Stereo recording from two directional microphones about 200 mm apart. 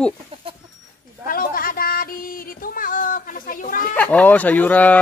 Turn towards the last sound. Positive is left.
turn(degrees=5)  # may be behind; listen again after turning